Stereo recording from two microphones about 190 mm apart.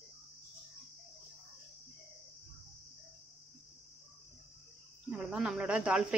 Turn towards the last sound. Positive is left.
turn(degrees=-5)  # may be behind; listen again after turning